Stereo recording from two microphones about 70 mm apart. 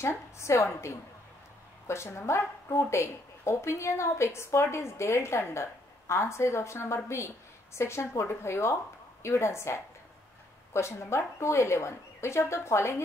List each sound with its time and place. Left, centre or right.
0.0 s a woman's voice: left